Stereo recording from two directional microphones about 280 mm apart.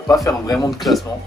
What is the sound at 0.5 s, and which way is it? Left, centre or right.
Speech, centre.